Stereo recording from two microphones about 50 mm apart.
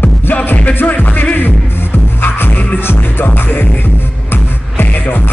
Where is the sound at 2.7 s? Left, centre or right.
Left.